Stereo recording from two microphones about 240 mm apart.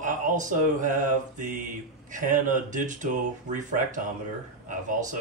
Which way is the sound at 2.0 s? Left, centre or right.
Right.